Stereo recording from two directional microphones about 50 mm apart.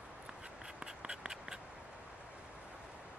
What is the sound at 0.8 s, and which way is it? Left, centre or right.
Writing, centre.